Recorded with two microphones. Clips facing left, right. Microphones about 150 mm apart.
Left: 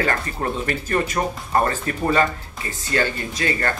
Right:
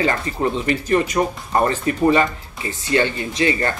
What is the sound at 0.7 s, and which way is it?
Speech, 45° left (ahead or behind).